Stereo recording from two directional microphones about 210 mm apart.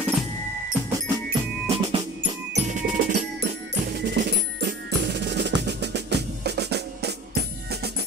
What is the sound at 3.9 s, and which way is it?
Drum, 50° right (ahead or behind).